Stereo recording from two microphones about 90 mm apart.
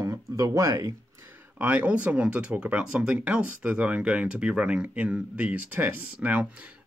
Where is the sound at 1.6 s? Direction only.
15° right (ahead or behind).